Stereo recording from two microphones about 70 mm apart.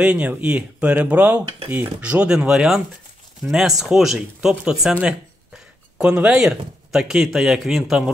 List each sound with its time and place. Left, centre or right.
0.0 s a man's voice: centre
5.9 s a man's voice: centre